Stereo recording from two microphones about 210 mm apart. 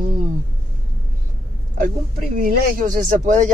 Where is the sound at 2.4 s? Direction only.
40° right (ahead or behind).